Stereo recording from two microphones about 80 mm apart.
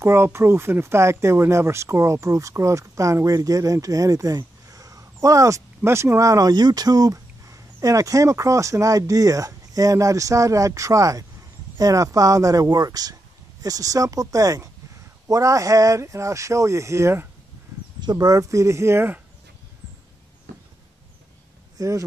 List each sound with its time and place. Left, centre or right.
0.0 s speech: right
17.7 s a sound: right
18.1 s speech: right
21.7 s speech: right